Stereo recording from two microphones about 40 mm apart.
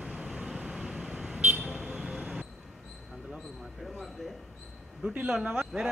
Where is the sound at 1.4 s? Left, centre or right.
Right.